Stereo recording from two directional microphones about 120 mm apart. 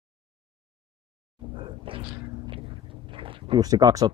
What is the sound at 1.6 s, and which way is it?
Roar, 45° right (ahead or behind).